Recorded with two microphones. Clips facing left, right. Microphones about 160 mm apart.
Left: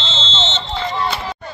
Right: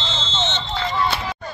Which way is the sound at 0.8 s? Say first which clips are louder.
Even; 15° left (ahead or behind).